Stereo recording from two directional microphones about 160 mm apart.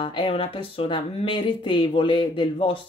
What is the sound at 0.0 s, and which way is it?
Speech, 35° left (ahead or behind).